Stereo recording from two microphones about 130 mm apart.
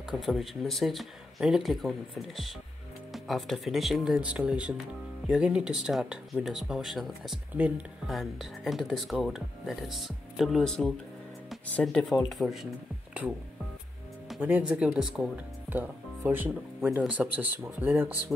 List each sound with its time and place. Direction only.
0.1 s speech: centre (ahead or behind)
7.5 s speech: 10° right (ahead or behind)
8.1 s speech: centre (ahead or behind)
14.3 s speech: 5° right (ahead or behind)